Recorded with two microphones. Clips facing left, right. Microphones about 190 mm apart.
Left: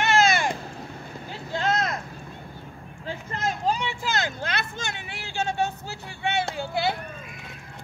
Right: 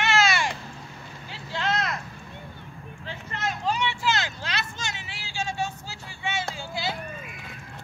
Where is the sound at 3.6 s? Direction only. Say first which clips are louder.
Right 3 dB; 50° left (ahead or behind).